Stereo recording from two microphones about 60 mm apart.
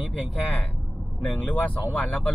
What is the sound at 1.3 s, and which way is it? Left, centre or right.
Speech, left.